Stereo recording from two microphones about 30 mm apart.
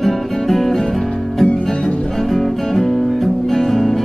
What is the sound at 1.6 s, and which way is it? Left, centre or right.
Music, centre.